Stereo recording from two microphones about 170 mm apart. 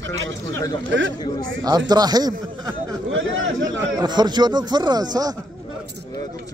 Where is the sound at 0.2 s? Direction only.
90° right.